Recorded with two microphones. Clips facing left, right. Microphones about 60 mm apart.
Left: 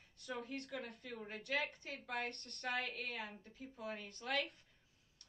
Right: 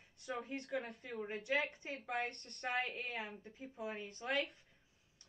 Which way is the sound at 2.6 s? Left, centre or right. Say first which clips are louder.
Right 2 dB; centre.